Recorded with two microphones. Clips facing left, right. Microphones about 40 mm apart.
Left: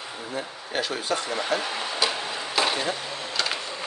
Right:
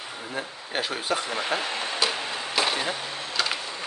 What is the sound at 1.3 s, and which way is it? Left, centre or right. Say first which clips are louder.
Speech: left 1 dB; right.